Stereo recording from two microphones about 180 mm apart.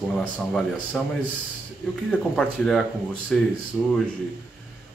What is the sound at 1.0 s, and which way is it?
Speech, centre (ahead or behind).